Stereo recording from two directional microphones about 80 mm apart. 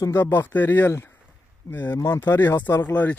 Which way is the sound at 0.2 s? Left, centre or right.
Left.